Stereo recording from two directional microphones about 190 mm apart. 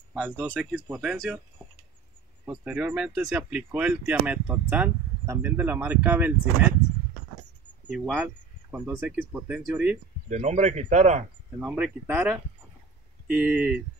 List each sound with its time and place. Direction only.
0.1 s speech: 5° right (ahead or behind)
2.4 s speech: 10° right (ahead or behind)
7.8 s speech: 10° right (ahead or behind)
10.3 s speech: 35° right (ahead or behind)
11.6 s speech: 5° right (ahead or behind)